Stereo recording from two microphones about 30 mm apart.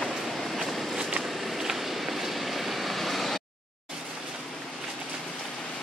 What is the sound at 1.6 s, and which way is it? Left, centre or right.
Vehicle, centre.